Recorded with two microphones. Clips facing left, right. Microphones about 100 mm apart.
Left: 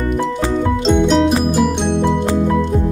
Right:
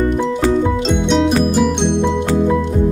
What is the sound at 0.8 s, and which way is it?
Music, centre (ahead or behind).